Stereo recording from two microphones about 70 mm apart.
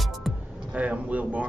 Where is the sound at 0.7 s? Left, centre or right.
Right.